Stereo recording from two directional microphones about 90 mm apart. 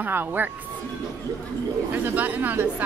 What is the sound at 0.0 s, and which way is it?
Speech, 20° right (ahead or behind).